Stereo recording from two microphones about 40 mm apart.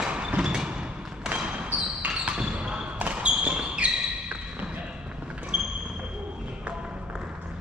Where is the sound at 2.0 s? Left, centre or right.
Right.